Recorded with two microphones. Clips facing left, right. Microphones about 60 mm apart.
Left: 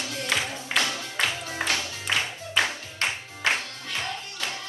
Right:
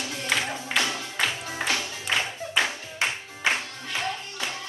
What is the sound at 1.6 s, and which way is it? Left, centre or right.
Music, centre.